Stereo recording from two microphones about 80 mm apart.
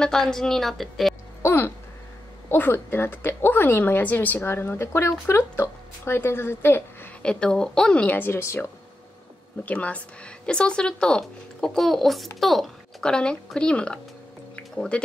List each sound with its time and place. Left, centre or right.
0.0 s a woman's voice: centre
1.4 s a sound: left
2.5 s a woman's voice: left
7.2 s speech: centre
8.2 s a woman's voice: left
9.7 s speech: centre
14.5 s a sound: centre